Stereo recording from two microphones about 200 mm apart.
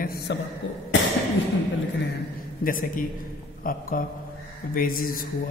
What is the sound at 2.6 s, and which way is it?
A man's voice, 45° left (ahead or behind).